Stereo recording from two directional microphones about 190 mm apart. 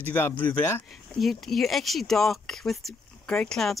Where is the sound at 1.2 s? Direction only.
Centre (ahead or behind).